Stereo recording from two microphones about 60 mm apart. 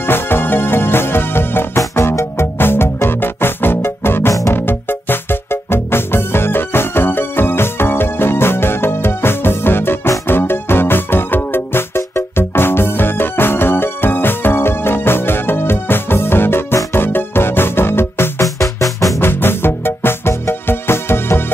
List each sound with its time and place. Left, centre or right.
0.0 s music: left
4.3 s music: left
4.6 s music: left
18.4 s music: left
19.1 s music: left